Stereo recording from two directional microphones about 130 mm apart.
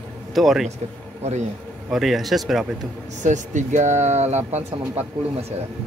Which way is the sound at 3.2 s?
70° right (ahead or behind).